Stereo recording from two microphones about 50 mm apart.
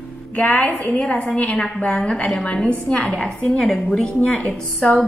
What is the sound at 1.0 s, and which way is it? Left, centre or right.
A woman's voice, left.